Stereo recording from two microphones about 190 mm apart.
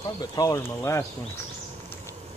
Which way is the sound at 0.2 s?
20° left (ahead or behind).